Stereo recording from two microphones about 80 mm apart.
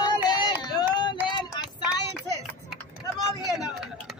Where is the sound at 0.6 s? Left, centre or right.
Left.